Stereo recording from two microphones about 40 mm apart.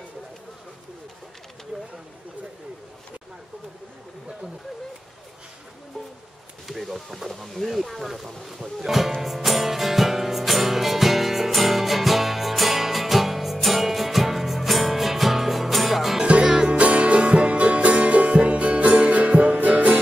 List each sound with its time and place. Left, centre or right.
1.7 s a sound: right
6.7 s speech: centre
9.2 s music: centre
16.2 s music: right